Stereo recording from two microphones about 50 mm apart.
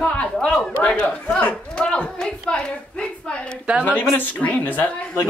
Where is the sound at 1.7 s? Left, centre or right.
Centre.